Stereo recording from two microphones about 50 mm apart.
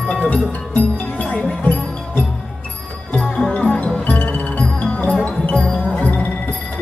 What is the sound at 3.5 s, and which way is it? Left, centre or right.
Music, left.